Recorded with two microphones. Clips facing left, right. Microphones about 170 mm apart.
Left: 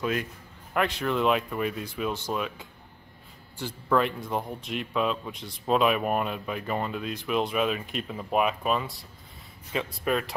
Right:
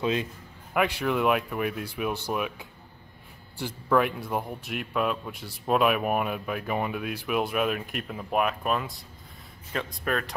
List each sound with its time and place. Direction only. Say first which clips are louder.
0.0 s a man's voice: right 2 dB; 25° right (ahead or behind)
0.7 s a man's voice: right 1 dB; 10° right (ahead or behind)
10.0 s speech: left 2 dB; 5° left (ahead or behind)